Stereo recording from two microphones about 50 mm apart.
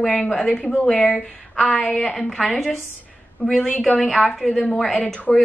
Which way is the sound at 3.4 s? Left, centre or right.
Centre.